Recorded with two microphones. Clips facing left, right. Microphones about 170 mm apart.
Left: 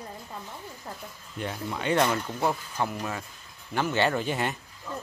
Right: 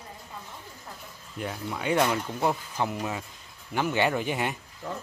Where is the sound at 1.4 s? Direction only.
5° right (ahead or behind).